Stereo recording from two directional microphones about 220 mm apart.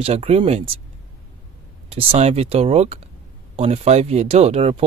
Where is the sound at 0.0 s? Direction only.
30° right (ahead or behind).